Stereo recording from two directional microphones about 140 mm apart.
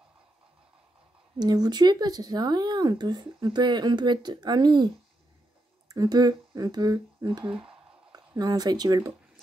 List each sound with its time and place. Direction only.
1.4 s speech: 30° right (ahead or behind)
5.9 s speech: 25° right (ahead or behind)